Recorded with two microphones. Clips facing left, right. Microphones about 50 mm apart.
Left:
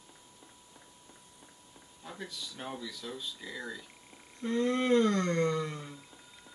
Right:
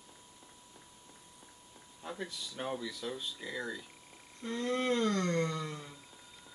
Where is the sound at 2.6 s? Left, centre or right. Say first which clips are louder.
Right 4 dB; centre.